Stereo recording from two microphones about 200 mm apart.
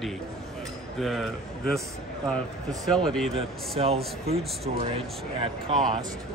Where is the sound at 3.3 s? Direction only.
30° right (ahead or behind).